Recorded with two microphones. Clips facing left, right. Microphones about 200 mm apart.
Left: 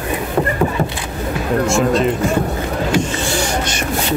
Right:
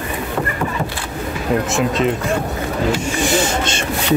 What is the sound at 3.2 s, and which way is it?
Vehicle, 20° right (ahead or behind).